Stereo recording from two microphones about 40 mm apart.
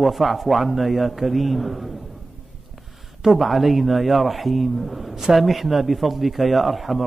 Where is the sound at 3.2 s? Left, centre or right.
Centre.